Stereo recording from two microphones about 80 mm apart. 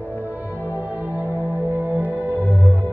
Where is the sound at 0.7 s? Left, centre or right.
Right.